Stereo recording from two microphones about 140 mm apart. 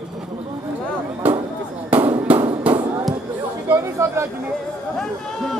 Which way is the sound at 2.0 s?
45° right (ahead or behind).